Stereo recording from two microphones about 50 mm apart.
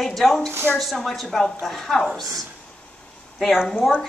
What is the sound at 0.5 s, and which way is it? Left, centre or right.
Speech, right.